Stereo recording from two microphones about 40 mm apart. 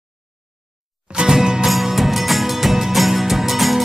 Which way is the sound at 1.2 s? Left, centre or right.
Centre.